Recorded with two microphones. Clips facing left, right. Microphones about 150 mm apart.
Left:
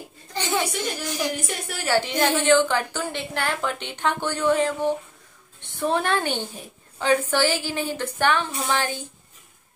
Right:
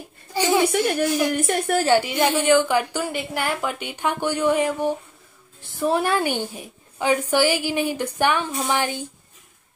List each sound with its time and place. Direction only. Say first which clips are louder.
0.3 s a sound: right 7 dB; 10° right (ahead or behind)
0.7 s a woman's voice: right 8 dB; 55° right (ahead or behind)
1.9 s a woman's voice: left 1 dB; 10° right (ahead or behind)